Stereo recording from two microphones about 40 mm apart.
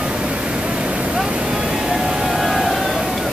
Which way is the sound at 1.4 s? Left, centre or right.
Centre.